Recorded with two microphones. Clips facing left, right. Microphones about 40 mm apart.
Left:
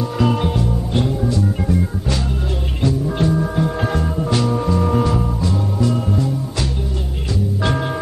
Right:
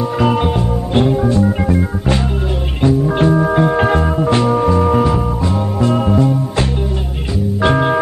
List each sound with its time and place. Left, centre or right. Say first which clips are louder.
0.2 s music: right 3 dB; right
5.5 s music: right 4 dB; right
7.6 s music: right 9 dB; right